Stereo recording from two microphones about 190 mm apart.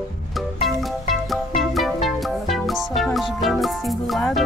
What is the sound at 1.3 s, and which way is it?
Music, centre (ahead or behind).